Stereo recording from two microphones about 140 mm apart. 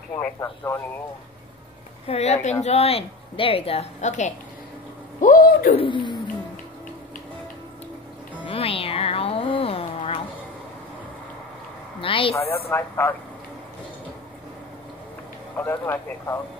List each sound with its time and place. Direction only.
0.4 s speech: 15° left (ahead or behind)
2.0 s a woman's voice: 50° left (ahead or behind)
5.2 s a sound: 70° left (ahead or behind)
5.8 s wild animals: 35° left (ahead or behind)
8.5 s speech: 40° left (ahead or behind)
12.0 s wild animals: 40° left (ahead or behind)
12.6 s speech: 15° left (ahead or behind)
15.5 s speech: 15° left (ahead or behind)